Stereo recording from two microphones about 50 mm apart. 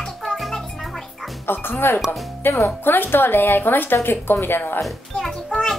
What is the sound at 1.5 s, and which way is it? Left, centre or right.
Speech, left.